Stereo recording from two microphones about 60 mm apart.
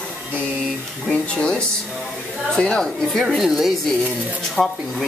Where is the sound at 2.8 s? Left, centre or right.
Centre.